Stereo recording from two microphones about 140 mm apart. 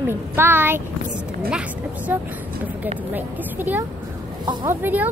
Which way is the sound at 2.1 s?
15° right (ahead or behind).